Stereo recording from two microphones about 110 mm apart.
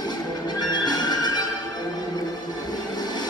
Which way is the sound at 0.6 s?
40° left (ahead or behind).